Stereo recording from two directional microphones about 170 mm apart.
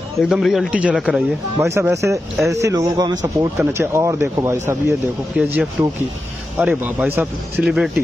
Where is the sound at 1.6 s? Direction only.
15° right (ahead or behind).